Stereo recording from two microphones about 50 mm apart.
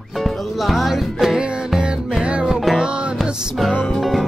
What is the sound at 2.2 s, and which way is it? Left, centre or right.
Music, right.